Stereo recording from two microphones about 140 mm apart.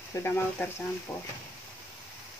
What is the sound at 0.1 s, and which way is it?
Speech, 15° left (ahead or behind).